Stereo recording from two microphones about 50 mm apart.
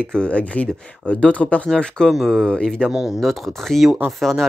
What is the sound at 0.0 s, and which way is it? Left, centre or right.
Speech, centre.